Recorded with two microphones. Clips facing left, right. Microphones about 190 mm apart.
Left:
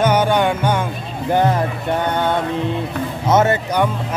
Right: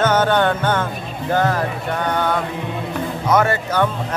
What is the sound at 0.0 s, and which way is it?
Music, 10° left (ahead or behind).